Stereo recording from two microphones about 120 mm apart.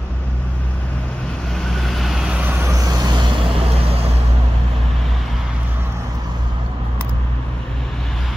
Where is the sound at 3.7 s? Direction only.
55° right (ahead or behind).